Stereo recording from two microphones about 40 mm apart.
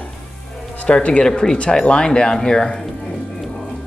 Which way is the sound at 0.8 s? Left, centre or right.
Left.